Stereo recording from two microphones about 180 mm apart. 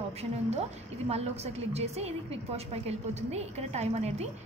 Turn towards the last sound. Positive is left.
turn(degrees=-35)  # may be behind; listen again after turning